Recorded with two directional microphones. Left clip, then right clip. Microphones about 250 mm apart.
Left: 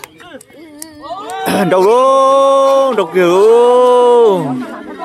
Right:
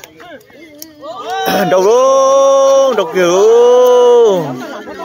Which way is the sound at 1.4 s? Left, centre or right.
Centre.